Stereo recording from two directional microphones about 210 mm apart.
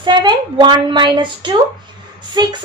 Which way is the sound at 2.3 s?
20° right (ahead or behind).